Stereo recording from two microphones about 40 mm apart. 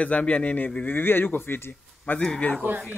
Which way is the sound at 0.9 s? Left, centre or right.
Left.